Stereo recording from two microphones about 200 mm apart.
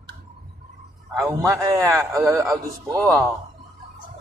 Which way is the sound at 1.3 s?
15° right (ahead or behind).